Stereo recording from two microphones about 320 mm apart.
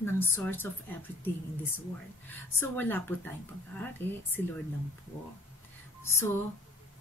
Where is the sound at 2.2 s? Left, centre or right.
Centre.